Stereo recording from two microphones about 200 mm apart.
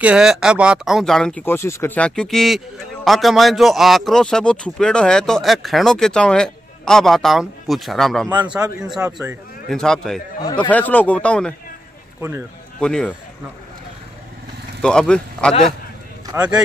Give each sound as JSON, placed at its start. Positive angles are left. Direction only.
{"t": 0.0, "sound": "speech", "side_deg": -5}
{"t": 8.3, "sound": "a man's voice", "side_deg": -20}
{"t": 8.8, "sound": "speech", "side_deg": 0}
{"t": 10.4, "sound": "a man's voice", "side_deg": 25}
{"t": 10.7, "sound": "speech", "side_deg": 10}
{"t": 12.2, "sound": "speech", "side_deg": -15}
{"t": 12.8, "sound": "speech", "side_deg": 5}
{"t": 14.8, "sound": "speech", "side_deg": 5}